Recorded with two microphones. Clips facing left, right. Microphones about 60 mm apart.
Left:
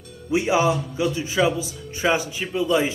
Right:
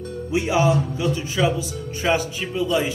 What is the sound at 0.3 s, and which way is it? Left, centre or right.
A man's voice, left.